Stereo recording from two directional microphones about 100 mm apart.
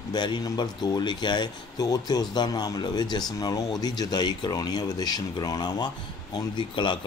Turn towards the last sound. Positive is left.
turn(degrees=50)  # may be behind; listen again after turning